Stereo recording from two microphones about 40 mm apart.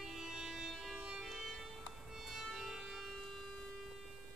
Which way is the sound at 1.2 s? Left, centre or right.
Centre.